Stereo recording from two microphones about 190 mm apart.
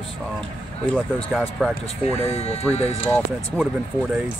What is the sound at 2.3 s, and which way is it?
Speech, 35° left (ahead or behind).